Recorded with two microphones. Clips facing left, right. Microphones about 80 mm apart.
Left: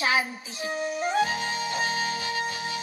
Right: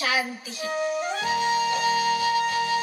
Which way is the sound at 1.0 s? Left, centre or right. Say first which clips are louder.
Right 1 dB; left.